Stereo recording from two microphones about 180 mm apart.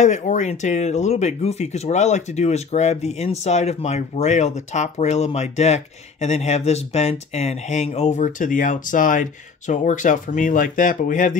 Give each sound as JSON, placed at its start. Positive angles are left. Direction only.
{"t": 0.0, "sound": "speech", "side_deg": 40}